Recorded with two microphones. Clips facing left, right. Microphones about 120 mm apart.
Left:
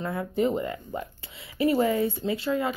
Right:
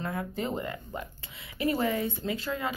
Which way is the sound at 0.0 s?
30° left (ahead or behind).